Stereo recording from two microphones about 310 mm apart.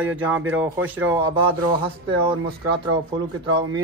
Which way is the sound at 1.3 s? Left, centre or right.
Centre.